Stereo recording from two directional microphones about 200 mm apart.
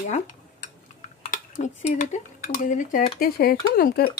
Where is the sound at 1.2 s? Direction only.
35° left (ahead or behind).